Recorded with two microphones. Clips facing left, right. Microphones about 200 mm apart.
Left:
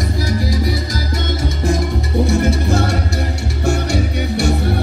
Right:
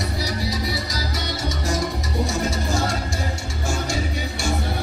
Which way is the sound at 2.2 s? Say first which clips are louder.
Left 8 dB; 60° left (ahead or behind).